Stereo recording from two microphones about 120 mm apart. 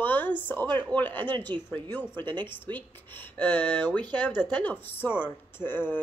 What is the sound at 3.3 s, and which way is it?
A woman's voice, 15° left (ahead or behind).